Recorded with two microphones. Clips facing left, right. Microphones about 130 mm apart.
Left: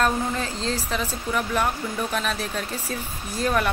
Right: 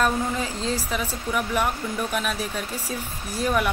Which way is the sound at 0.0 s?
10° right (ahead or behind).